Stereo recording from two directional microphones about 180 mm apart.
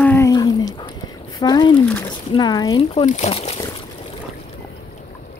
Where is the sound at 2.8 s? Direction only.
35° left (ahead or behind).